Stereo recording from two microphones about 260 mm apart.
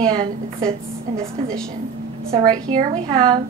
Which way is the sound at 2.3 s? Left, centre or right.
Centre.